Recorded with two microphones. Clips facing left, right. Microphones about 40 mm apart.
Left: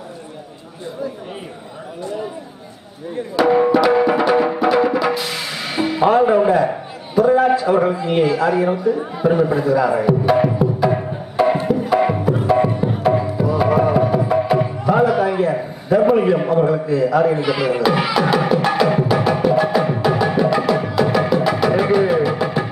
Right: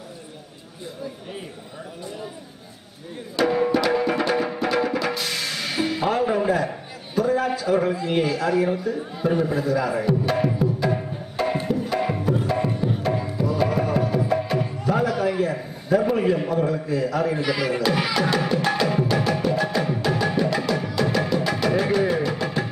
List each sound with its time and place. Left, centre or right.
3.3 s music: centre
6.0 s a man's voice: left
10.9 s music: left
11.3 s music: centre